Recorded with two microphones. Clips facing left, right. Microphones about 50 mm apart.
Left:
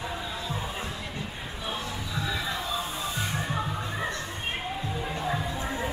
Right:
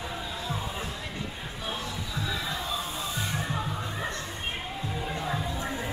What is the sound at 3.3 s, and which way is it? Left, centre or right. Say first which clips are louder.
Music: left 1 dB; centre.